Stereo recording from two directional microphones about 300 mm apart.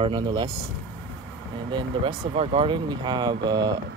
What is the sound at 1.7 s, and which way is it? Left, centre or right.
Speech, centre.